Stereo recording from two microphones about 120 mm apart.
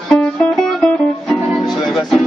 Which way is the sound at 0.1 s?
5° left (ahead or behind).